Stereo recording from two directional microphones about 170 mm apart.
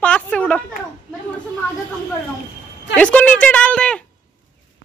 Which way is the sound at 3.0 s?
5° left (ahead or behind).